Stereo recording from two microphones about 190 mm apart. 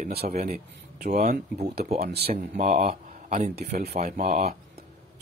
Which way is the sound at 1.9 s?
55° right (ahead or behind).